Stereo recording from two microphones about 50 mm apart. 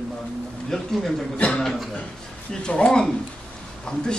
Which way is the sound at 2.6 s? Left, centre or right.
Centre.